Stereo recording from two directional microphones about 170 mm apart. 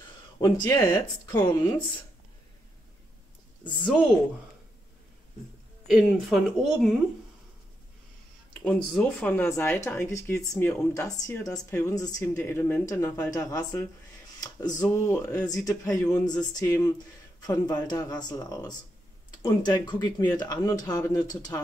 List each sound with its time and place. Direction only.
0.4 s speech: 20° left (ahead or behind)
3.8 s speech: 5° right (ahead or behind)
5.9 s speech: centre (ahead or behind)
8.6 s a woman's voice: 5° left (ahead or behind)